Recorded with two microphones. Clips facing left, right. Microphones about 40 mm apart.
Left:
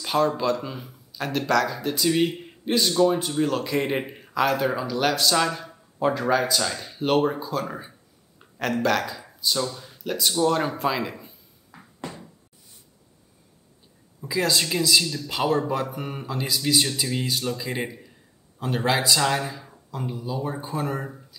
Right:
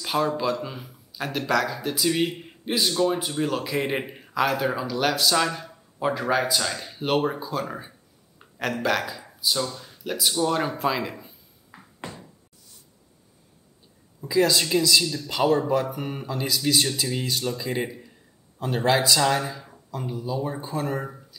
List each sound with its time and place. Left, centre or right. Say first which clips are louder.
0.0 s a sound: left 2 dB; centre
0.4 s speech: left 1 dB; centre
14.2 s speech: right 3 dB; centre